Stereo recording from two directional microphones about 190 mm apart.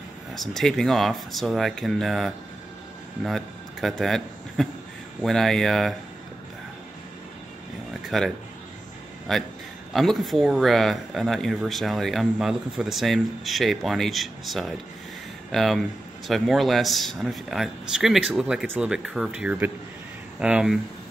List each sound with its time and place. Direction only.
0.3 s speech: centre (ahead or behind)
8.1 s speech: centre (ahead or behind)
9.3 s speech: centre (ahead or behind)